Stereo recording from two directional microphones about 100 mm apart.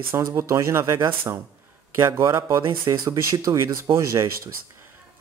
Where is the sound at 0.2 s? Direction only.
30° right (ahead or behind).